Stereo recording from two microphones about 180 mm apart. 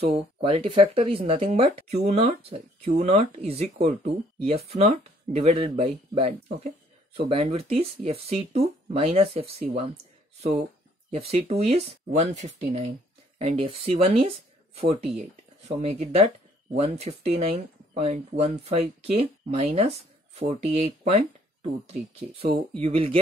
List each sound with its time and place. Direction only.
0.0 s speech: 30° right (ahead or behind)
11.1 s speech: 35° right (ahead or behind)
15.8 s speech: 35° right (ahead or behind)